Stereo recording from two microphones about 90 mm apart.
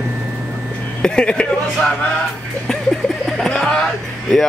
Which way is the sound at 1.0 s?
10° left (ahead or behind).